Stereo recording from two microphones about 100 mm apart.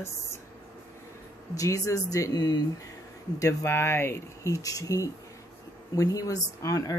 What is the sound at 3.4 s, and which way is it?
Speech, 30° left (ahead or behind).